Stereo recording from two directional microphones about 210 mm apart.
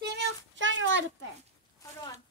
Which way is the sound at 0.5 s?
65° right (ahead or behind).